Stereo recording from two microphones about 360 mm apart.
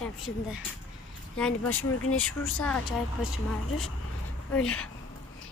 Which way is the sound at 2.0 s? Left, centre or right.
Left.